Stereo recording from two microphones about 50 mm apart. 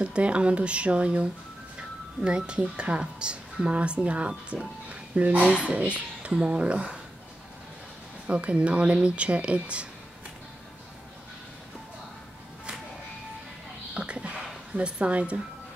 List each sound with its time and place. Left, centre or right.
0.0 s speech: right
8.3 s speech: right
13.9 s a sound: right